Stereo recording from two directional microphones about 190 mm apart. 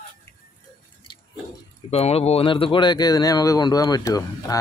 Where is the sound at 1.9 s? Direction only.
35° left (ahead or behind).